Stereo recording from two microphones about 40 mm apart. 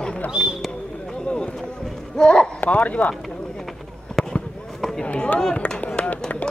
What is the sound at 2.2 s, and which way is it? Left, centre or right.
Speech, centre.